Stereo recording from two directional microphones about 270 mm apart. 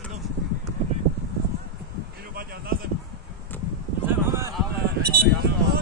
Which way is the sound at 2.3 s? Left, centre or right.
Right.